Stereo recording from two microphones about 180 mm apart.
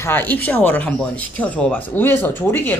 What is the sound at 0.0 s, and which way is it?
Speech, 10° left (ahead or behind).